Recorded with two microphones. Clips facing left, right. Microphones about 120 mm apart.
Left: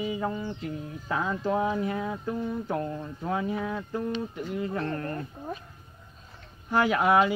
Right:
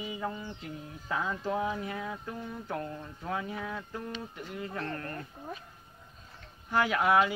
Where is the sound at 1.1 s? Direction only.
60° left (ahead or behind).